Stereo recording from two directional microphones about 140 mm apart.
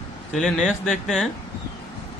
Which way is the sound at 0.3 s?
Centre (ahead or behind).